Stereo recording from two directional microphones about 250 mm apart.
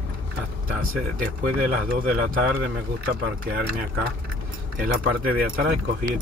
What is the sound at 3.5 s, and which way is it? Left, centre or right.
Speech, right.